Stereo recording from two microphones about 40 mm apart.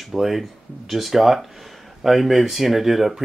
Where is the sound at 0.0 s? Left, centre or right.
Centre.